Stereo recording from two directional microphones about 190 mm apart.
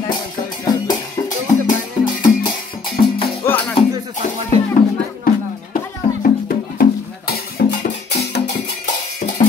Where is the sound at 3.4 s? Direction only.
15° left (ahead or behind).